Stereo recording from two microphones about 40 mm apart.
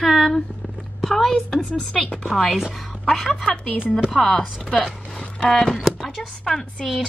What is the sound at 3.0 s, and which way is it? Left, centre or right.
Speech, centre.